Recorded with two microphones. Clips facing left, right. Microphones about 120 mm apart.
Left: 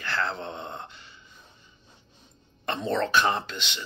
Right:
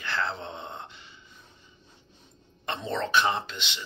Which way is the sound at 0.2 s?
50° left (ahead or behind).